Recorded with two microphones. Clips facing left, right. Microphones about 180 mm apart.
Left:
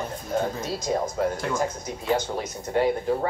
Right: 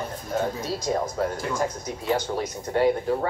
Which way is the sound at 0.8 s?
25° left (ahead or behind).